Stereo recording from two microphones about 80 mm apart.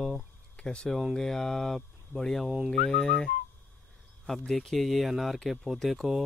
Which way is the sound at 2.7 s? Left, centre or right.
Centre.